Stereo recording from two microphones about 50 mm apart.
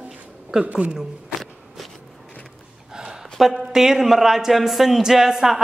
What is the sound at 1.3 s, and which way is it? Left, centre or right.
Walk, centre.